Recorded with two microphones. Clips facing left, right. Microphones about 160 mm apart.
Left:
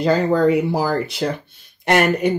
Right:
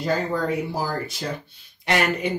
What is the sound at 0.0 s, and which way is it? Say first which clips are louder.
Speech: left 8 dB; 75° left (ahead or behind).